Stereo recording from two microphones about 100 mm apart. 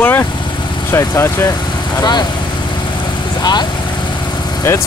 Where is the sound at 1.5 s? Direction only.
45° left (ahead or behind).